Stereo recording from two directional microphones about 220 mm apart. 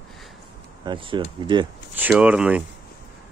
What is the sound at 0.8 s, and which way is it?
Speech, 20° right (ahead or behind).